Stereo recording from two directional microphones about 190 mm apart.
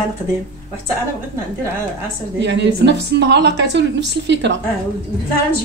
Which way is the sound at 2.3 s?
70° right (ahead or behind).